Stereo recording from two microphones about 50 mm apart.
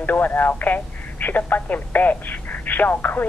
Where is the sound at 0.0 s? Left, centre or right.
Left.